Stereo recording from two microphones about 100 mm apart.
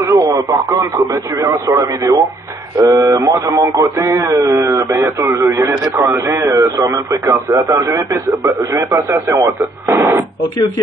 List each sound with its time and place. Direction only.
0.0 s speech: 35° right (ahead or behind)